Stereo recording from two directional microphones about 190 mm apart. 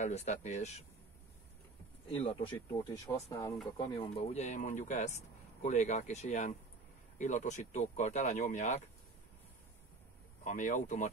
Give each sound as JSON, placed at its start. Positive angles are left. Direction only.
{"t": 0.0, "sound": "speech", "side_deg": 35}
{"t": 2.0, "sound": "speech", "side_deg": 30}
{"t": 2.8, "sound": "speech", "side_deg": 15}
{"t": 10.4, "sound": "speech", "side_deg": 40}